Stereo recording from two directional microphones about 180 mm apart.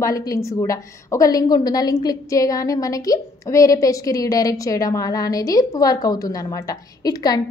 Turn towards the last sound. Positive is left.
turn(degrees=20)  # may be behind; listen again after turning